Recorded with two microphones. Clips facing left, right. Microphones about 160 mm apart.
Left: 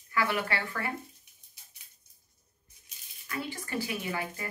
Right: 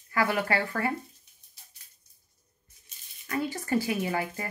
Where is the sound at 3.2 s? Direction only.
40° right (ahead or behind).